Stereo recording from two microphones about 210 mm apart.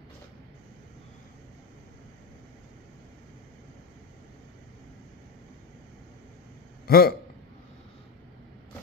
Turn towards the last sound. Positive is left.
turn(degrees=45)  # may be behind; listen again after turning